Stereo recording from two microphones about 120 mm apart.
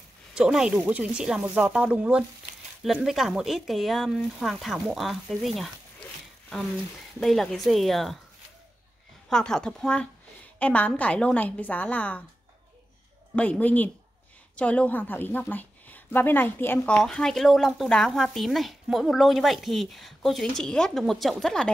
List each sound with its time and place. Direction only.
0.3 s speech: 5° right (ahead or behind)
7.2 s speech: centre (ahead or behind)
9.3 s a woman's voice: 5° left (ahead or behind)
13.4 s a woman's voice: 10° left (ahead or behind)
16.9 s speech: 5° left (ahead or behind)